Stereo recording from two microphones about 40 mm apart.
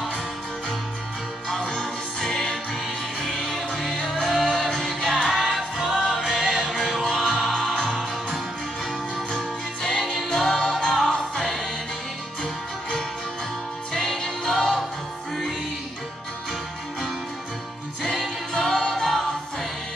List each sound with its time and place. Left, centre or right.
1.7 s music: centre
6.0 s music: centre
9.8 s music: centre
13.9 s music: centre
18.0 s music: centre
18.5 s music: centre